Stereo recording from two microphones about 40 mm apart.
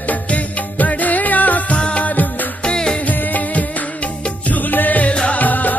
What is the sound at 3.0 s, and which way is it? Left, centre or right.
Music, left.